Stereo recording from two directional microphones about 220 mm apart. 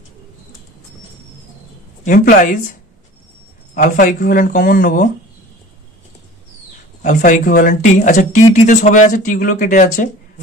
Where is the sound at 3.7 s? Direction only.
40° left (ahead or behind).